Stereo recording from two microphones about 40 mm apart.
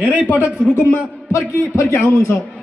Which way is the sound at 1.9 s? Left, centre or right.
Left.